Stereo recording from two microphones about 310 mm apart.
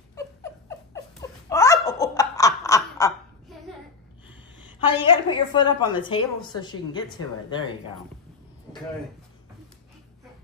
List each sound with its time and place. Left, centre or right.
0.1 s a sound: centre
1.5 s laughter: centre
4.7 s a woman's voice: centre